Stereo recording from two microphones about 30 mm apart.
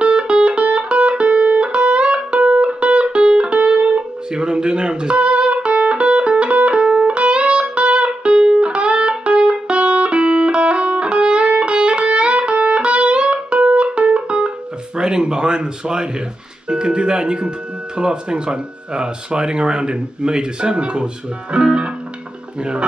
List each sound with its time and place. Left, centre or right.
0.0 s music: right
4.3 s music: right
15.0 s speech: right